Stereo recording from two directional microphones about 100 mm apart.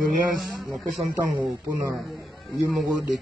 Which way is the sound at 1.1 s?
25° right (ahead or behind).